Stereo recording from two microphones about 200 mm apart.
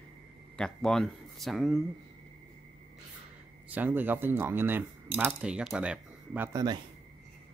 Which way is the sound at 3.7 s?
10° right (ahead or behind).